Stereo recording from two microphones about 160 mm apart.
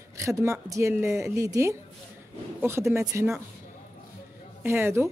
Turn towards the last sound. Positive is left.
turn(degrees=-15)  # may be behind; listen again after turning